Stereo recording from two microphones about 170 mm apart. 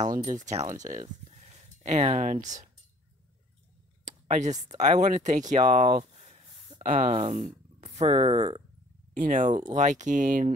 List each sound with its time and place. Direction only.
0.0 s speech: 50° right (ahead or behind)
4.0 s speech: 45° right (ahead or behind)
6.9 s speech: 50° right (ahead or behind)